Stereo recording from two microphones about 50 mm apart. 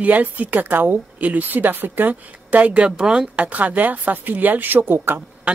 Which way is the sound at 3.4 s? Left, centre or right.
Right.